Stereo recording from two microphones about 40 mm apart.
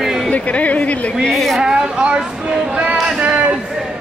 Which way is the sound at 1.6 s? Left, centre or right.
Centre.